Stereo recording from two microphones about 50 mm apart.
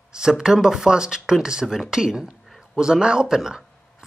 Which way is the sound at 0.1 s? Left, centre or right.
Centre.